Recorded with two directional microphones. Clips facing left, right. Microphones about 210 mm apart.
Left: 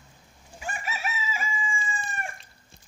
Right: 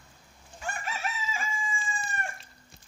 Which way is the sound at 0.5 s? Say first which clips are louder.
Left 1 dB; 5° left (ahead or behind).